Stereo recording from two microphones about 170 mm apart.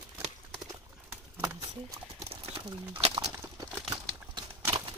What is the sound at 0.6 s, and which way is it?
Horse, 15° right (ahead or behind).